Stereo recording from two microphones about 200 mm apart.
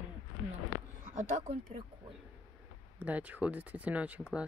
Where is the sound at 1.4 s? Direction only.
30° right (ahead or behind).